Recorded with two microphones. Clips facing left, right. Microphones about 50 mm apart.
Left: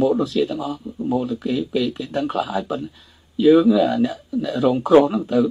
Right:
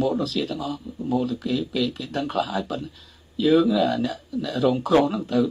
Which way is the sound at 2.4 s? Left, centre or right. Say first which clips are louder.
Left 3 dB; centre.